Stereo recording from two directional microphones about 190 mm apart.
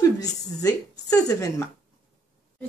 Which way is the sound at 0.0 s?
20° left (ahead or behind).